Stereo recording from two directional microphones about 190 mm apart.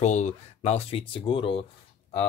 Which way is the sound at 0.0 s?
40° left (ahead or behind).